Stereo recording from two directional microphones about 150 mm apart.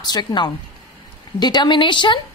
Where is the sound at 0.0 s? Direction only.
30° left (ahead or behind).